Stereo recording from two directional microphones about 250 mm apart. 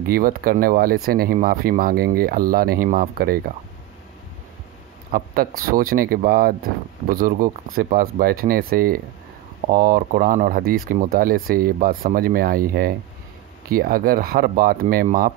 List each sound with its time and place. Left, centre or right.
0.1 s speech: right
5.1 s speech: right